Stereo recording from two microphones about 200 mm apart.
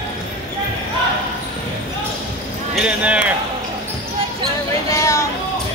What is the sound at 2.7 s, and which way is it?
Speech, 5° right (ahead or behind).